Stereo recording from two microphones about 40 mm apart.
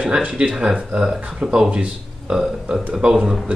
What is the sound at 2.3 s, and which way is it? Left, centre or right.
Speech, centre.